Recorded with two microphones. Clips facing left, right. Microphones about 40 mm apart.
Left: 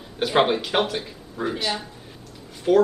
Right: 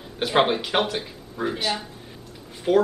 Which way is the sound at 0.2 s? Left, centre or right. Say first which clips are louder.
Left 1 dB; centre.